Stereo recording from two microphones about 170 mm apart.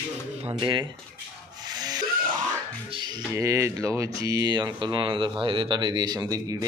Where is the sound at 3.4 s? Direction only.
20° right (ahead or behind).